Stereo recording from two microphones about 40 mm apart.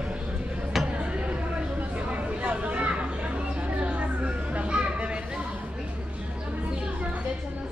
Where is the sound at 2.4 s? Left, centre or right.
Right.